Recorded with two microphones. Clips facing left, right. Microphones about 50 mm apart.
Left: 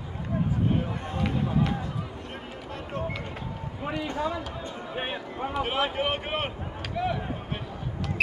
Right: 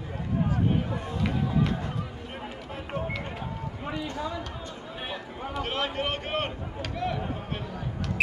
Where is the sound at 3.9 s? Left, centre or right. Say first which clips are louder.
Left 4 dB; centre.